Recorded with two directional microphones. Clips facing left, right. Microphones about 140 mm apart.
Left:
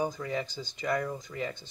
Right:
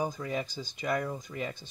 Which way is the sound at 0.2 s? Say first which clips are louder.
Even; 15° right (ahead or behind).